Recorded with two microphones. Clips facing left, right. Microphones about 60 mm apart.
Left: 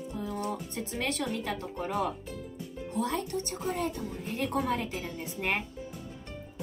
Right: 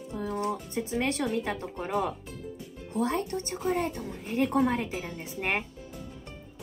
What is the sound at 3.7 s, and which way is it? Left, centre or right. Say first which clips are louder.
Speech: right 4 dB; right.